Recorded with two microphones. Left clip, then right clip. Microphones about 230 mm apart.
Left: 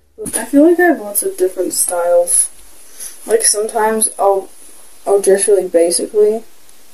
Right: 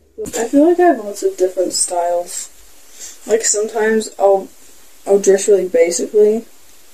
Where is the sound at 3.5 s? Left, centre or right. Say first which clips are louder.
Left 1 dB; centre.